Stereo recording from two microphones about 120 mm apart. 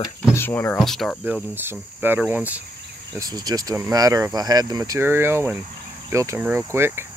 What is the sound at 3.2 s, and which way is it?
Speech, 35° right (ahead or behind).